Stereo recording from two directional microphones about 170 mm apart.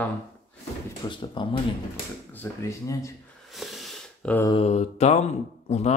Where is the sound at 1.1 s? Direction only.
30° left (ahead or behind).